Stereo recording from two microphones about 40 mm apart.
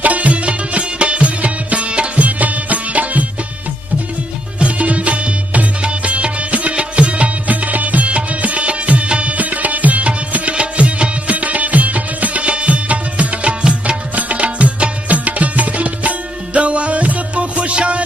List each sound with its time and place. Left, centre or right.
0.0 s music: right
4.6 s music: right